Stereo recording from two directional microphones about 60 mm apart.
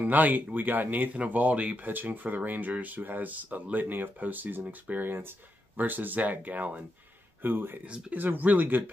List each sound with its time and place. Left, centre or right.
0.0 s speech: right
7.8 s speech: right